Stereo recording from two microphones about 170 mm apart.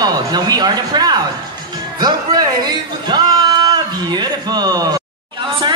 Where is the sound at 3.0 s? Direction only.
25° right (ahead or behind).